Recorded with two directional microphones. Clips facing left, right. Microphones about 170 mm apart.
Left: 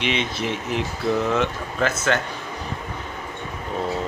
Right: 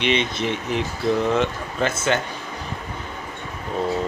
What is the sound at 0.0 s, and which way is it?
Speech, 5° left (ahead or behind).